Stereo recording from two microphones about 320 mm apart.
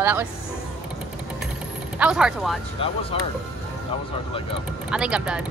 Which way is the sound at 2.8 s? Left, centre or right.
Centre.